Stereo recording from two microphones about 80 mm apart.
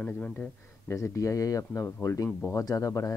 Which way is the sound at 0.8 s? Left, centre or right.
Left.